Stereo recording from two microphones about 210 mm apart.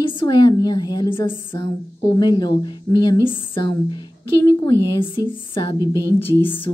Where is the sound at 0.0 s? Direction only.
25° left (ahead or behind).